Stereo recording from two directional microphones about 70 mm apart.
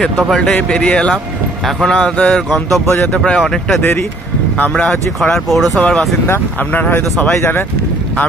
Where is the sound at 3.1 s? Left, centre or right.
Centre.